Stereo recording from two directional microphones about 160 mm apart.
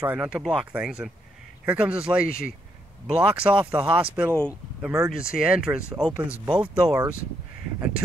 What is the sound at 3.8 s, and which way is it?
Speech, 35° right (ahead or behind).